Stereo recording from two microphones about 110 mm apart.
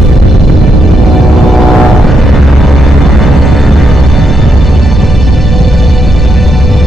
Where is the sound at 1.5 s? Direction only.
Centre (ahead or behind).